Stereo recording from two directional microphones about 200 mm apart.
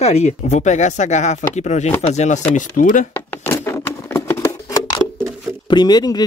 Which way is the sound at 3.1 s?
10° left (ahead or behind).